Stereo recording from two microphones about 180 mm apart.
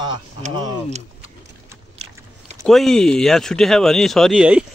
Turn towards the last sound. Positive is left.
turn(degrees=-5)  # may be behind; listen again after turning